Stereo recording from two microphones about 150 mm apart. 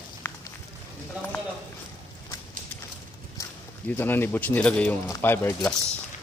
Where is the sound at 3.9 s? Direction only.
15° left (ahead or behind).